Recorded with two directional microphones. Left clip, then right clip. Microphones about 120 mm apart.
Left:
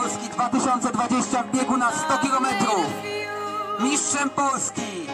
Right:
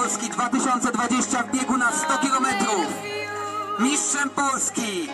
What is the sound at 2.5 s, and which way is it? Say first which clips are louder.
Music: left 1 dB; centre (ahead or behind).